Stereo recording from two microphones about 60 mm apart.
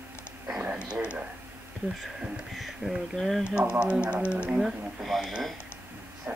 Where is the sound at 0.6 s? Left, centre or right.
Centre.